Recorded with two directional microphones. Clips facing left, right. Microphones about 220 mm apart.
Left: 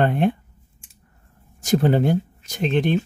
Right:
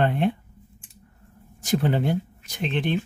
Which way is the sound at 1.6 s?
45° left (ahead or behind).